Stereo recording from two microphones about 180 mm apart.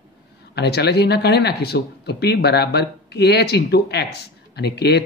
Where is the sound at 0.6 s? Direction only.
65° left (ahead or behind).